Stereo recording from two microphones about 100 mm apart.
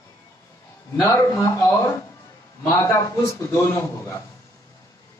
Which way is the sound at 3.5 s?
25° left (ahead or behind).